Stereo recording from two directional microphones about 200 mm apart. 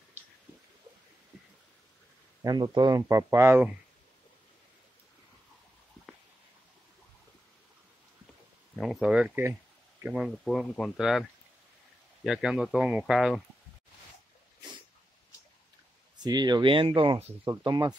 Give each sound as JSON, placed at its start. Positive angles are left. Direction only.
{"t": 2.4, "sound": "speech", "side_deg": -20}
{"t": 8.7, "sound": "speech", "side_deg": 0}
{"t": 16.3, "sound": "speech", "side_deg": -20}